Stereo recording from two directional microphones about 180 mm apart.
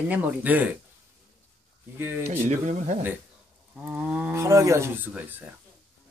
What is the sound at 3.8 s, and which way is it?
Speech, 5° right (ahead or behind).